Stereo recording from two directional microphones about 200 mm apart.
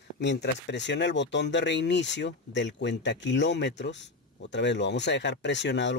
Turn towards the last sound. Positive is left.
turn(degrees=60)  # may be behind; listen again after turning